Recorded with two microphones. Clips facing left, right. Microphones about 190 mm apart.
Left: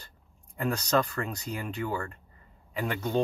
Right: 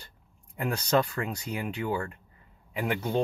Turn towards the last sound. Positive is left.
turn(degrees=-10)  # may be behind; listen again after turning